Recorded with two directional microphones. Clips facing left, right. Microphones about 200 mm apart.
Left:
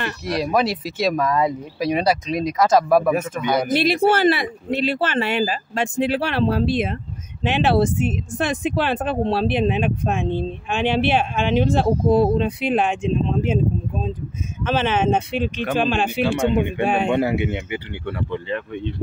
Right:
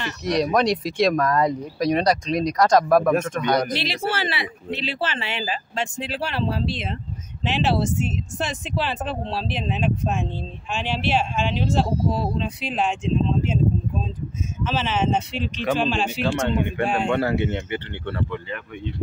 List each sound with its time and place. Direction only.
0.2 s speech: 5° left (ahead or behind)
3.7 s speech: 50° left (ahead or behind)
14.6 s speech: 55° left (ahead or behind)
16.4 s speech: 15° left (ahead or behind)
16.8 s speech: 60° left (ahead or behind)
17.1 s speech: 15° left (ahead or behind)
18.3 s speech: 25° left (ahead or behind)